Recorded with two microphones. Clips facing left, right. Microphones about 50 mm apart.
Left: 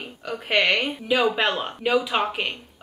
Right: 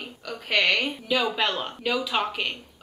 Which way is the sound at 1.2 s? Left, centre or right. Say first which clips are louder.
Left 4 dB; left.